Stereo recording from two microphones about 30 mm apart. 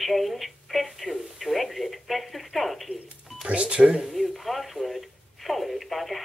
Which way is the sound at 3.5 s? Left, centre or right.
Right.